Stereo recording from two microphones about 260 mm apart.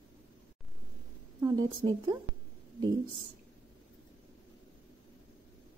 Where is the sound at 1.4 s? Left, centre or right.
Centre.